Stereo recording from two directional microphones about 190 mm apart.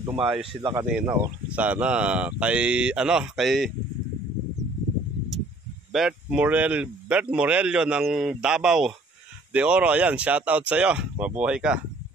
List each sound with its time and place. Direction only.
0.0 s speech: 10° right (ahead or behind)
0.8 s speech: 5° right (ahead or behind)
5.9 s speech: 5° right (ahead or behind)